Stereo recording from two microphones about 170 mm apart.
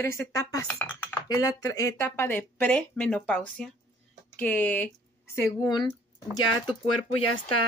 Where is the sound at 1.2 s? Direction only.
25° left (ahead or behind).